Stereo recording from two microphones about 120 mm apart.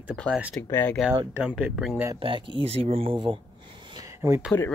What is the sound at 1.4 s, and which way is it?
Speech, 5° right (ahead or behind).